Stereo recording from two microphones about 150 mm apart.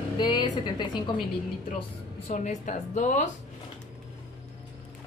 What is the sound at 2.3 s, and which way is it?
Speech, 55° left (ahead or behind).